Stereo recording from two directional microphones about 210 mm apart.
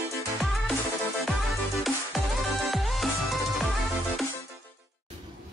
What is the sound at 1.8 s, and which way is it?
Music, centre (ahead or behind).